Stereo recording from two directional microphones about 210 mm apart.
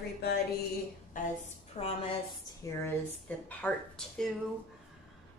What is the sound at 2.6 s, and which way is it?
Speech, 15° left (ahead or behind).